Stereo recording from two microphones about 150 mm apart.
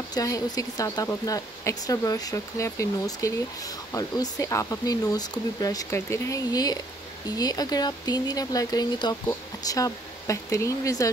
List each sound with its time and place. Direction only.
0.1 s speech: 25° left (ahead or behind)